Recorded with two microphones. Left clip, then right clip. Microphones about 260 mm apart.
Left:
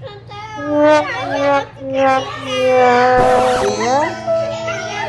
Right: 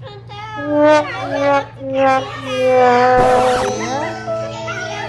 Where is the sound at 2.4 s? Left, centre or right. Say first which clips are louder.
Even; centre.